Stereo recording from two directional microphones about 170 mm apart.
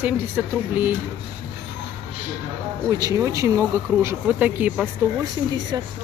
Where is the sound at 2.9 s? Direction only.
20° right (ahead or behind).